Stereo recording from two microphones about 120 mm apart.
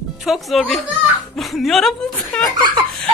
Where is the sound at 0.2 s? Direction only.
Centre (ahead or behind).